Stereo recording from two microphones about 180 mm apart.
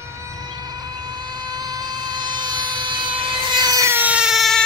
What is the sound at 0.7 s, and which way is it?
Vehicle, 25° right (ahead or behind).